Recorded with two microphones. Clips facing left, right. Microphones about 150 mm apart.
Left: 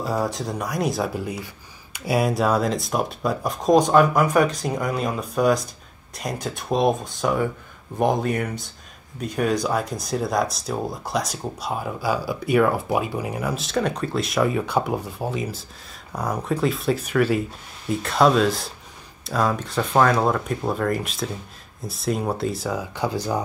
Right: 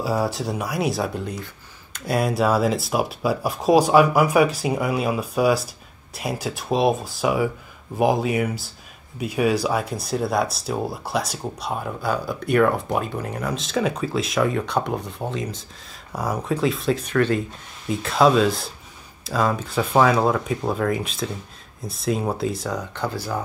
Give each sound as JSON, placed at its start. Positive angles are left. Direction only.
{"t": 0.0, "sound": "speech", "side_deg": -5}
{"t": 23.0, "sound": "speech", "side_deg": 20}